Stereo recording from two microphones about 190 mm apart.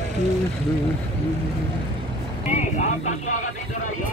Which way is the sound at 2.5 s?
40° left (ahead or behind).